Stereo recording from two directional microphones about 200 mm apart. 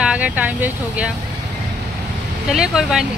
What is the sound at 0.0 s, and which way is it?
Speech, 5° right (ahead or behind).